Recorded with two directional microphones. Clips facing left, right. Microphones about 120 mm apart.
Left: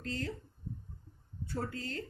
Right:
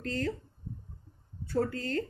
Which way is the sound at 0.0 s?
50° right (ahead or behind).